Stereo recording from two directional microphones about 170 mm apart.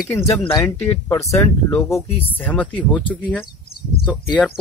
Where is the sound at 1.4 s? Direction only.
15° left (ahead or behind).